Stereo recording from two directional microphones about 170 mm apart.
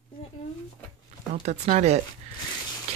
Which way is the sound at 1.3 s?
40° right (ahead or behind).